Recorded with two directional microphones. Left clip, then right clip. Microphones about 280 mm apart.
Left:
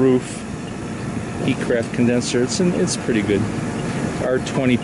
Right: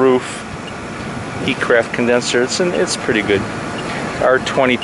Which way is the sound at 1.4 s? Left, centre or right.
Centre.